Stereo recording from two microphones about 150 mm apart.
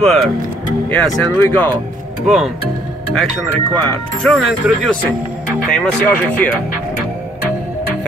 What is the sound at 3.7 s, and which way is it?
Speech, 5° left (ahead or behind).